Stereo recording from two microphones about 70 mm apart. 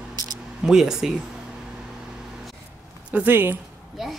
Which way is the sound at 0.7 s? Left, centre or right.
Centre.